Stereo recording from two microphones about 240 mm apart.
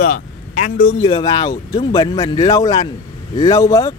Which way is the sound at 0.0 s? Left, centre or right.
Left.